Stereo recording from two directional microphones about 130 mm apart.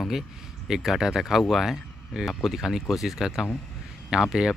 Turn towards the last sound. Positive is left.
turn(degrees=-5)  # may be behind; listen again after turning